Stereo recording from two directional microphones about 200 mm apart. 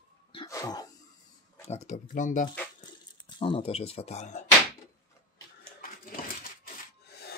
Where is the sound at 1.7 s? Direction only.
35° left (ahead or behind).